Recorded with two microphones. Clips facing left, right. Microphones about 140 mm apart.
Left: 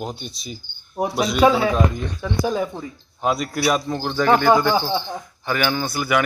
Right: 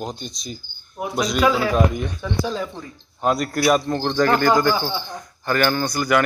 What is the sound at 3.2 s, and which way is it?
Speech, centre (ahead or behind).